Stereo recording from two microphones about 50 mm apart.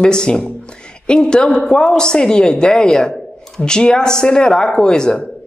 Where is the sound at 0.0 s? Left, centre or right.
Centre.